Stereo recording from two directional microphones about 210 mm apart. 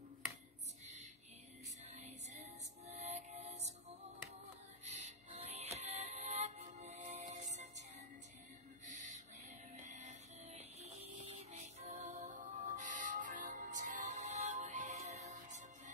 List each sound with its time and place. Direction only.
1.9 s music: 30° right (ahead or behind)
4.8 s music: 30° right (ahead or behind)
8.8 s music: 35° right (ahead or behind)